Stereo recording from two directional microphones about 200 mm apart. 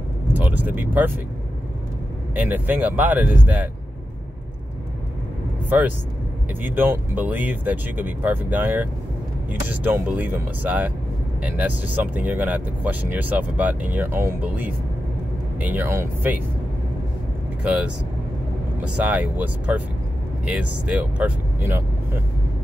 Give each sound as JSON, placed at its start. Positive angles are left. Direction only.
{"t": 0.3, "sound": "speech", "side_deg": -10}
{"t": 2.3, "sound": "speech", "side_deg": -10}
{"t": 5.7, "sound": "speech", "side_deg": -10}
{"t": 18.9, "sound": "speech", "side_deg": -5}